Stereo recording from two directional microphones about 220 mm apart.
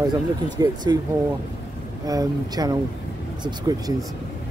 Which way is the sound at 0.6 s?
20° right (ahead or behind).